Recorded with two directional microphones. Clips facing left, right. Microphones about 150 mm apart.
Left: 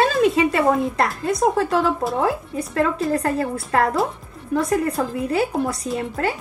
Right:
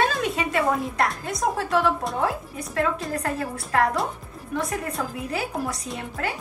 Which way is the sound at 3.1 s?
30° left (ahead or behind).